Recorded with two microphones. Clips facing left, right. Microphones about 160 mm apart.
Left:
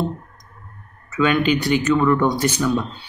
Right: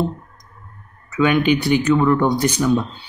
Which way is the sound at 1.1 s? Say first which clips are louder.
Right 2 dB; 10° right (ahead or behind).